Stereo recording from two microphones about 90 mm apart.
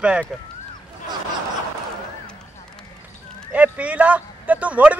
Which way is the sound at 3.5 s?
15° right (ahead or behind).